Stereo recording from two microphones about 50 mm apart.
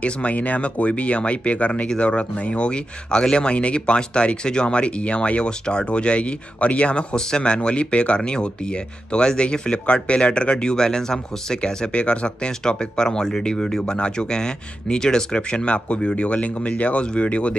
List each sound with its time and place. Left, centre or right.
0.0 s speech: left